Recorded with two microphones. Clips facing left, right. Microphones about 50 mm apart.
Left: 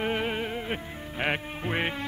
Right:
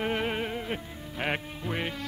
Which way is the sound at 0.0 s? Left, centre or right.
Centre.